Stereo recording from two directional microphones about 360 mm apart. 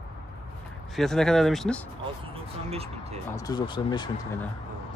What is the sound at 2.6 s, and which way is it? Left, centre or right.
Speech, centre.